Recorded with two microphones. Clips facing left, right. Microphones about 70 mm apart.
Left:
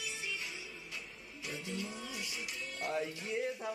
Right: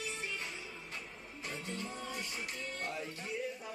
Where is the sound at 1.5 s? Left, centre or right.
Right.